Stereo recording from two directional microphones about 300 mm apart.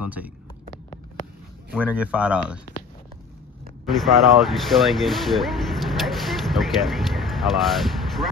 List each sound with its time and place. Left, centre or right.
0.0 s speech: centre
1.7 s speech: centre
3.8 s speech: centre